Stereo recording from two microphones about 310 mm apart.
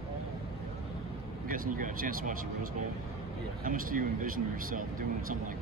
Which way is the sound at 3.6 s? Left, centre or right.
Right.